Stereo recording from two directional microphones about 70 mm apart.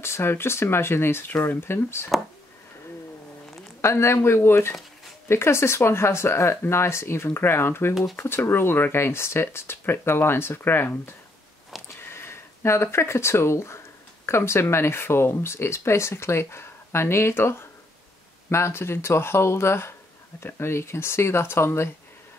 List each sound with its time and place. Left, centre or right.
0.0 s speech: left
3.8 s speech: left
11.7 s a sound: centre
12.1 s speech: left